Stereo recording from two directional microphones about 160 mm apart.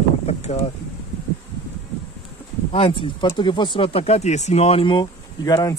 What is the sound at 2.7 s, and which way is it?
Speech, 35° left (ahead or behind).